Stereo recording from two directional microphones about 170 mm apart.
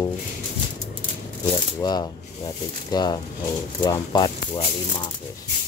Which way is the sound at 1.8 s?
25° left (ahead or behind).